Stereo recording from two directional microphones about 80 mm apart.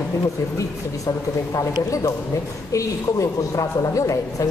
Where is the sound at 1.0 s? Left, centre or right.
Left.